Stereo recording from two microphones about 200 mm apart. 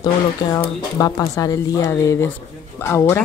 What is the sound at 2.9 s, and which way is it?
Speech, 10° left (ahead or behind).